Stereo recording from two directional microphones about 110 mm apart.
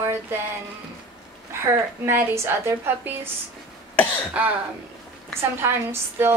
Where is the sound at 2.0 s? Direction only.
25° right (ahead or behind).